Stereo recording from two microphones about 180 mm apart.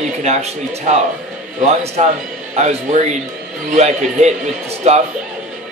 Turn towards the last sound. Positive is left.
turn(degrees=-40)  # may be behind; listen again after turning